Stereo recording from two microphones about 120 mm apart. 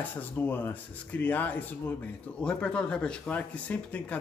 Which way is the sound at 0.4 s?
15° left (ahead or behind).